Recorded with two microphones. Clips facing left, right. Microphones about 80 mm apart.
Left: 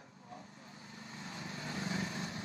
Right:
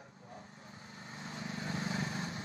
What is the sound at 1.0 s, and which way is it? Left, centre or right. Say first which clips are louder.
Vehicle: right 2 dB; right.